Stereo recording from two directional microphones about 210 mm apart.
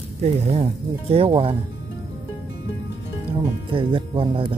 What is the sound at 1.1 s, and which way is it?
Speech, 25° right (ahead or behind).